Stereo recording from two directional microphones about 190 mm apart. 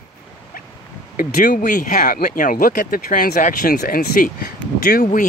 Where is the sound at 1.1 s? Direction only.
45° left (ahead or behind).